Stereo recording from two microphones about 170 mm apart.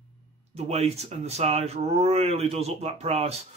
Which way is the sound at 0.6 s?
40° right (ahead or behind).